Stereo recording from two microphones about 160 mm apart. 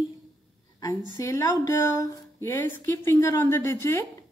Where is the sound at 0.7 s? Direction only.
20° left (ahead or behind).